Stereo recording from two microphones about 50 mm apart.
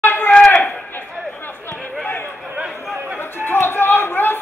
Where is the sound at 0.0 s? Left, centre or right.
Left.